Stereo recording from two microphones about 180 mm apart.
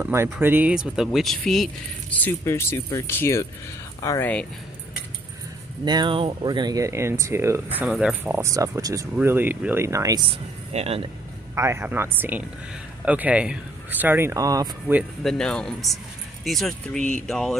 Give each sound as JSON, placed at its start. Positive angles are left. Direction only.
{"t": 0.0, "sound": "speech", "side_deg": -15}
{"t": 2.1, "sound": "speech", "side_deg": 10}
{"t": 5.9, "sound": "speech", "side_deg": -25}
{"t": 10.7, "sound": "a man's voice", "side_deg": -35}
{"t": 11.5, "sound": "speech", "side_deg": -15}
{"t": 15.0, "sound": "speech", "side_deg": 0}